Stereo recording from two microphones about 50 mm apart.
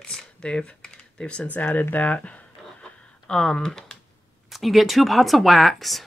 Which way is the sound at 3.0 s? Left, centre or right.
Centre.